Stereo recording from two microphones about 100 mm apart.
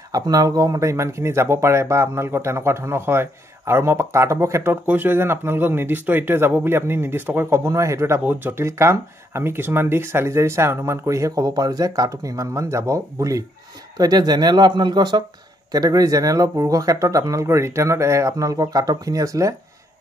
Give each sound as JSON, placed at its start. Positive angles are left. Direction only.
{"t": 0.1, "sound": "speech", "side_deg": -40}